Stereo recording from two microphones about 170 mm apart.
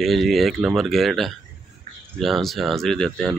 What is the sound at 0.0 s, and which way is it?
Speech, centre (ahead or behind).